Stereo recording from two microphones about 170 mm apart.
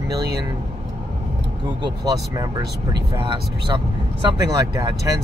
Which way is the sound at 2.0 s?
20° right (ahead or behind).